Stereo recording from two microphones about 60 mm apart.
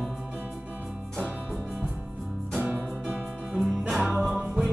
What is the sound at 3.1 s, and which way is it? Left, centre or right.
Music, centre.